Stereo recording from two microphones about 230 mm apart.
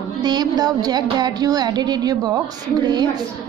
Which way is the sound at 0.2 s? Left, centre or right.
Centre.